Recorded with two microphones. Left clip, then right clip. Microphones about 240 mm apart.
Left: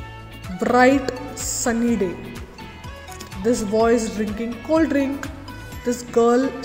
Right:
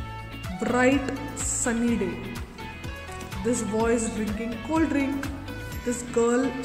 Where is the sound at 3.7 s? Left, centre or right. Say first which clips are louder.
Left 7 dB; centre.